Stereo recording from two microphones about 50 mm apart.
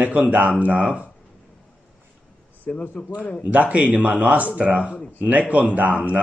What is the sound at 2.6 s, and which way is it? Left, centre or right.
Speech, left.